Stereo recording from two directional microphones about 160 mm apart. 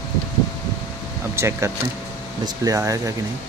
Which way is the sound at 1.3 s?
15° right (ahead or behind).